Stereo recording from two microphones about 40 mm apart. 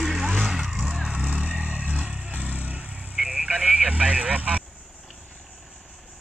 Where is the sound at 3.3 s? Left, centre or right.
Right.